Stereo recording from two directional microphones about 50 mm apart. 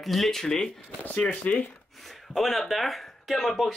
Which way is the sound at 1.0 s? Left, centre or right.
Left.